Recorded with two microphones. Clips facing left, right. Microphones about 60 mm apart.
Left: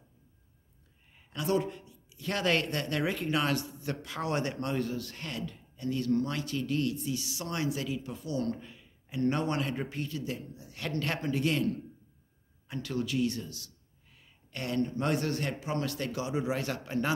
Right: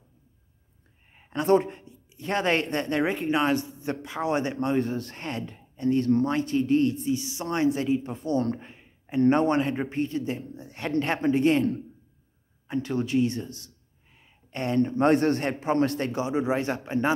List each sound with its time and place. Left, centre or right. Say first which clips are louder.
1.1 s speech: right 8 dB; right